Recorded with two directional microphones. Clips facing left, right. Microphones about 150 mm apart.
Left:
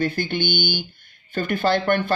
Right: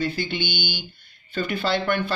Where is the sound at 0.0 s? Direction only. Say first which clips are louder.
Left 3 dB; 50° left (ahead or behind).